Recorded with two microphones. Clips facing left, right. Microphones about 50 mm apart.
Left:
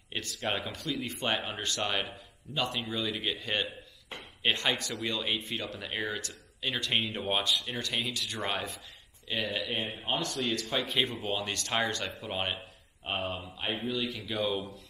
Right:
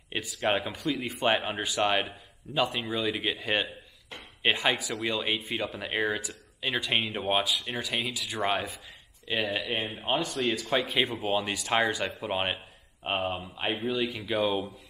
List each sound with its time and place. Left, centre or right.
0.1 s speech: centre